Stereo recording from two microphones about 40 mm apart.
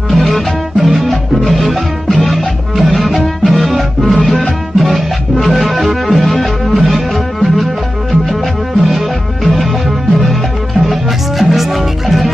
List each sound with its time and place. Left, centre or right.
0.1 s music: centre